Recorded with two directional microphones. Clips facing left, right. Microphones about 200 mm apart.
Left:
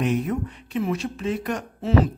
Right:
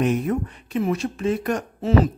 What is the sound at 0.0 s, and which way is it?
A man's voice, 45° right (ahead or behind).